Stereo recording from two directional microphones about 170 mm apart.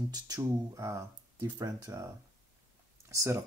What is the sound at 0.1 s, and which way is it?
Speech, 20° right (ahead or behind).